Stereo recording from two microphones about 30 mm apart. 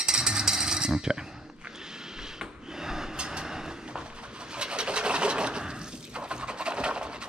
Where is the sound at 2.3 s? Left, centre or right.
Centre.